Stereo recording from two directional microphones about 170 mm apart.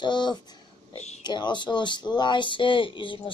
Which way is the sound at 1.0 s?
40° left (ahead or behind).